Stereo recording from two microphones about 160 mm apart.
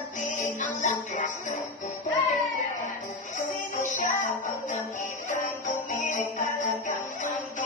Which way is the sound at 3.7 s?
55° left (ahead or behind).